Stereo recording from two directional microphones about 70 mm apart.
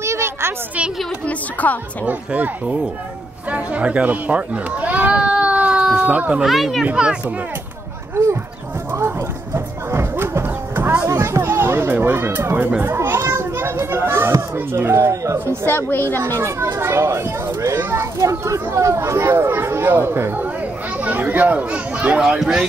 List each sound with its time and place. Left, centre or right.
0.0 s a sound: right
1.2 s a woman's voice: left
2.0 s speech: right
6.4 s a child's voice: centre
6.9 s speech: centre
8.2 s speech: right
9.0 s clip-clop: right
11.1 s speech: right
12.8 s children playing: right
14.3 s speech: right
15.6 s speech: left
16.3 s a child's voice: right
17.7 s speech: right
18.2 s speech: right; by 22.7 s centre